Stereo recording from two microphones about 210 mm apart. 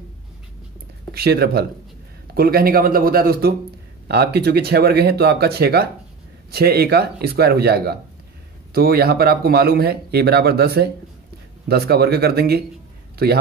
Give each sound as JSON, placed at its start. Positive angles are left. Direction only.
{"t": 1.1, "sound": "speech", "side_deg": -50}